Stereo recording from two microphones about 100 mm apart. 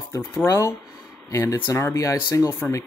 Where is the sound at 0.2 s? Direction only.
20° left (ahead or behind).